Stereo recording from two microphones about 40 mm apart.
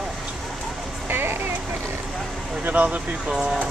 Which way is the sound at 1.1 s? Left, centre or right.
Right.